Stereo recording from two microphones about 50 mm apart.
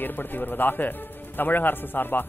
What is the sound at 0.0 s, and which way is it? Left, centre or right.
Speech, left.